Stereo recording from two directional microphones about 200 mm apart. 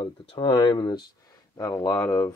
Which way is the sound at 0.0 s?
25° left (ahead or behind).